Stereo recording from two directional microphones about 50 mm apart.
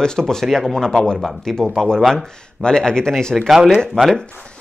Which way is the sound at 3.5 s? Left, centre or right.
Centre.